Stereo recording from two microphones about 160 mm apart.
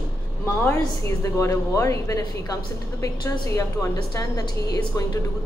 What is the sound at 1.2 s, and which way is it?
A woman's voice, 20° left (ahead or behind).